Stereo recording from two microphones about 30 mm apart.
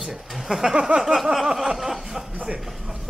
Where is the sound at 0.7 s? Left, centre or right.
Right.